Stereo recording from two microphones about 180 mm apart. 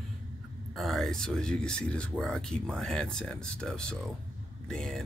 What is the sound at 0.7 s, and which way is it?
Speech, centre (ahead or behind).